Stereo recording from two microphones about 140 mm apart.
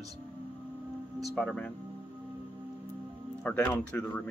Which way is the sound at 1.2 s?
5° left (ahead or behind).